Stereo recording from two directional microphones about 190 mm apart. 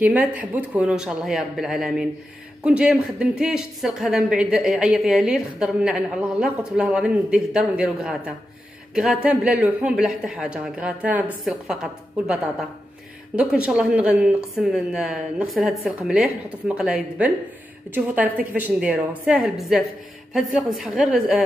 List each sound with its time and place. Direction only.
0.0 s a woman's voice: 10° right (ahead or behind)